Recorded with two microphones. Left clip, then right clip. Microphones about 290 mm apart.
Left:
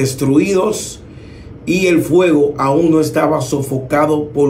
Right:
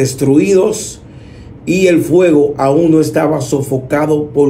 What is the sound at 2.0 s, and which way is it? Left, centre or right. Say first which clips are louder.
Speech: right 2 dB; centre.